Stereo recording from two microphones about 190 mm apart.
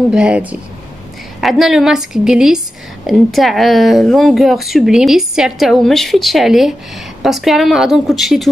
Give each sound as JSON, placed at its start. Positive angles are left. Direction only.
{"t": 0.1, "sound": "speech", "side_deg": -5}